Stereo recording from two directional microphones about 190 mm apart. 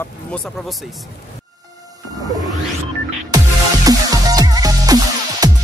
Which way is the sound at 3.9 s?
20° right (ahead or behind).